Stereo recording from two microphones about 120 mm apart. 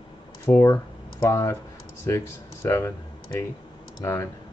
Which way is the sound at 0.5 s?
25° left (ahead or behind).